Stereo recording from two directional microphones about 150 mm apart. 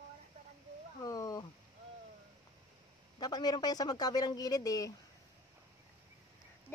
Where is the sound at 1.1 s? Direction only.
25° left (ahead or behind).